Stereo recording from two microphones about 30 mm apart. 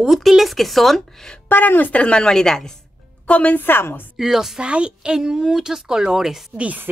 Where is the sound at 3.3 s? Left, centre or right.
Left.